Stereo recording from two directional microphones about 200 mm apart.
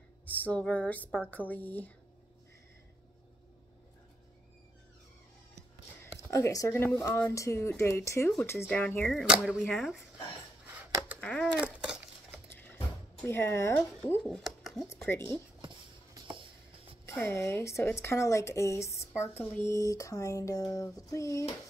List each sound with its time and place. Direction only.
0.2 s speech: 10° left (ahead or behind)
6.1 s speech: 15° left (ahead or behind)
10.8 s scissors: 10° right (ahead or behind)
11.1 s a sound: 5° left (ahead or behind)
12.4 s a sound: 10° left (ahead or behind)
14.9 s speech: 10° left (ahead or behind)
17.0 s speech: 15° left (ahead or behind)